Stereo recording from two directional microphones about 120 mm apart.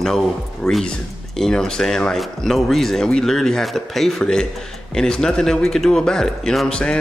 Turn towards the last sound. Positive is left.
turn(degrees=5)  # may be behind; listen again after turning